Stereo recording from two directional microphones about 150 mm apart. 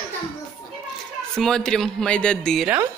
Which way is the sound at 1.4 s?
5° left (ahead or behind).